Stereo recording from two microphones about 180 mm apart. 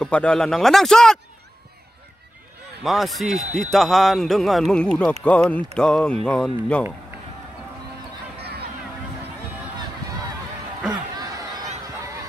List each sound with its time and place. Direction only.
0.0 s a man's voice: 5° left (ahead or behind)
2.8 s a man's voice: centre (ahead or behind)
8.4 s a sound: 65° right (ahead or behind)